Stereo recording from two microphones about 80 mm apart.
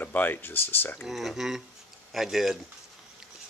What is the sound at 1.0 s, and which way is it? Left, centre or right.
Speech, centre.